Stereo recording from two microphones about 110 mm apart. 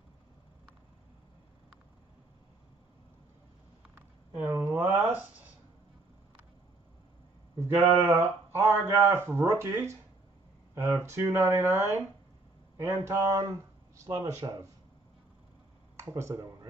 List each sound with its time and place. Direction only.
4.5 s a sound: 25° right (ahead or behind)
7.7 s speech: 20° right (ahead or behind)
16.0 s speech: 25° right (ahead or behind)